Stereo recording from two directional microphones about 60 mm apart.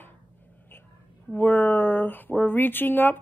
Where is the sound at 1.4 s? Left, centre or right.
Left.